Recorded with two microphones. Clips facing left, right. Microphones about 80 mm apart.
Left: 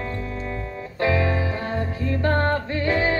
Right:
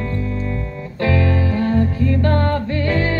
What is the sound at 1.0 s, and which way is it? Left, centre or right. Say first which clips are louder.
Music: right 3 dB; left.